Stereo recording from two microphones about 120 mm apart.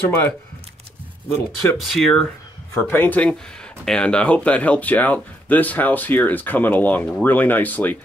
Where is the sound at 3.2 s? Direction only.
5° left (ahead or behind).